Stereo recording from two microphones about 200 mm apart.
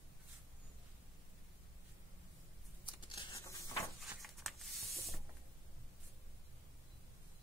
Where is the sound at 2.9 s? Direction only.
20° left (ahead or behind).